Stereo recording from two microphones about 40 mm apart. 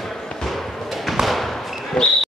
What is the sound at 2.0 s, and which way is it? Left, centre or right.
Basketball bounce, centre.